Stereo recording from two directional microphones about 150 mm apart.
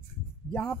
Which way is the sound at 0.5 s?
10° left (ahead or behind).